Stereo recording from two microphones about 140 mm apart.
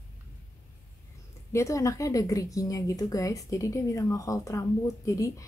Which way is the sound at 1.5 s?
20° left (ahead or behind).